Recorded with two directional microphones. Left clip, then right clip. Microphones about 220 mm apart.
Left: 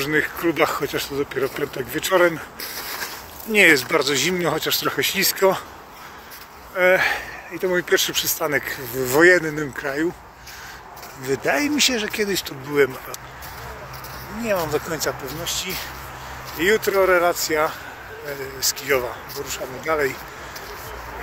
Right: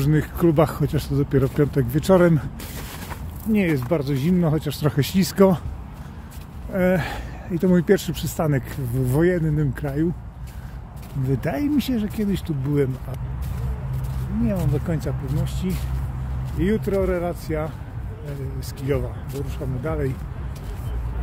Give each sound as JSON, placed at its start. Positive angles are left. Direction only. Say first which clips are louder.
{"t": 0.0, "sound": "speech", "louder": "left 1 dB", "side_deg": -30}
{"t": 3.5, "sound": "speech", "louder": "left 8 dB", "side_deg": 0}
{"t": 6.8, "sound": "speech", "louder": "left 6 dB", "side_deg": -25}
{"t": 7.9, "sound": "speech", "louder": "left 2 dB", "side_deg": -20}
{"t": 9.0, "sound": "speech", "louder": "left 7 dB", "side_deg": -10}
{"t": 11.2, "sound": "speech", "louder": "left 4 dB", "side_deg": -10}
{"t": 14.5, "sound": "speech", "louder": "left 10 dB", "side_deg": 0}